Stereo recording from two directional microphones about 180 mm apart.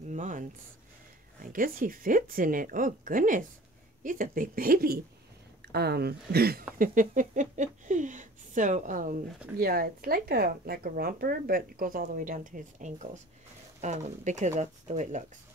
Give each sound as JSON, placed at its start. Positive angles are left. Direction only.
{"t": 0.1, "sound": "a sound", "side_deg": -45}
{"t": 1.4, "sound": "speech", "side_deg": -50}
{"t": 6.8, "sound": "speech", "side_deg": -45}
{"t": 9.6, "sound": "speech", "side_deg": -55}